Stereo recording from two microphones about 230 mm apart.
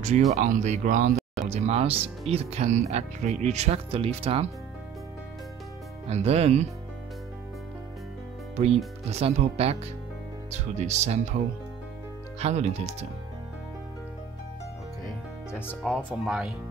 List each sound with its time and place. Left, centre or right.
0.0 s speech: right
1.1 s a sound: centre
1.5 s speech: right
6.0 s speech: right
9.1 s speech: right
15.6 s speech: centre